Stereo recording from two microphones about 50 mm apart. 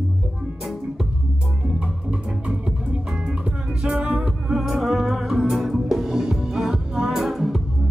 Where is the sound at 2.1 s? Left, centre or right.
Right.